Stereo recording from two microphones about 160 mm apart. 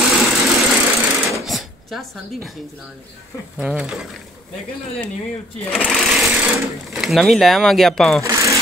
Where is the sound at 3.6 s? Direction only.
5° right (ahead or behind).